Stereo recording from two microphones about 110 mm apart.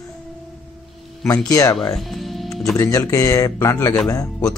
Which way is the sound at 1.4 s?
30° left (ahead or behind).